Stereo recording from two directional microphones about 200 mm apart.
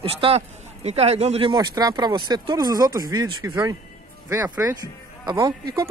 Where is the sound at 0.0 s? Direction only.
30° right (ahead or behind).